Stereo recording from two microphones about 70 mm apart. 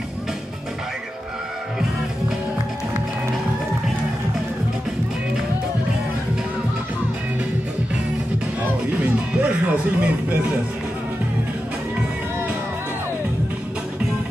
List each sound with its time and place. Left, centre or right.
9.3 s music: right